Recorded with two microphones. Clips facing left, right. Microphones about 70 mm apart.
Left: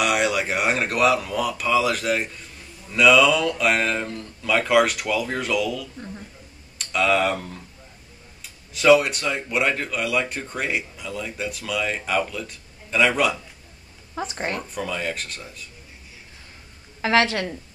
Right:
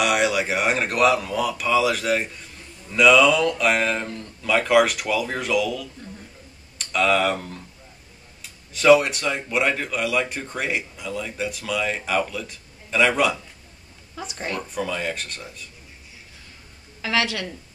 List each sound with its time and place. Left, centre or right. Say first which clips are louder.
0.0 s speech: right 1 dB; centre
14.1 s a woman's voice: left 3 dB; left
14.6 s speech: right 1 dB; centre
17.0 s a woman's voice: left 4 dB; left